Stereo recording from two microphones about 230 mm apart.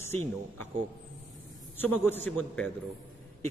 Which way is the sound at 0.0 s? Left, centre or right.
Centre.